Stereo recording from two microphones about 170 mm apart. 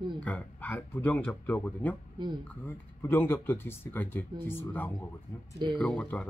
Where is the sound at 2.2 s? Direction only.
25° right (ahead or behind).